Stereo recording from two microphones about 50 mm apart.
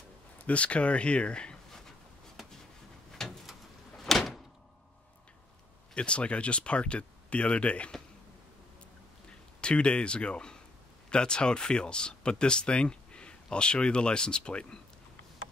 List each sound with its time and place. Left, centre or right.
0.5 s speech: left
3.1 s a sound: centre
4.0 s door: centre
5.9 s speech: left
9.6 s speech: centre